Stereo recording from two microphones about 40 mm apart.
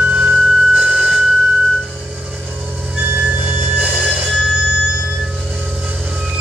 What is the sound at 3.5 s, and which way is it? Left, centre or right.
Train, right.